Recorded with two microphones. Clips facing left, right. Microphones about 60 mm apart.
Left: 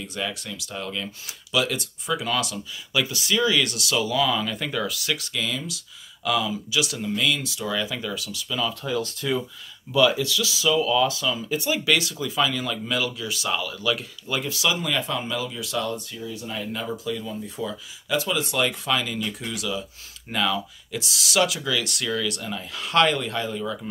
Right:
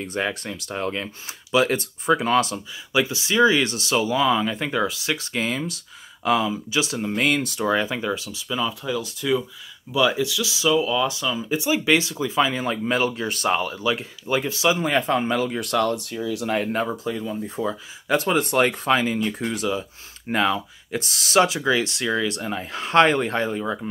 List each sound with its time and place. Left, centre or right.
0.0 s speech: right
2.5 s speech: right
8.8 s speech: centre; by 13.7 s right
13.7 s speech: right
16.5 s speech: right